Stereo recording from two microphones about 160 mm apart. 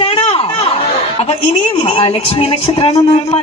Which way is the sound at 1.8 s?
40° left (ahead or behind).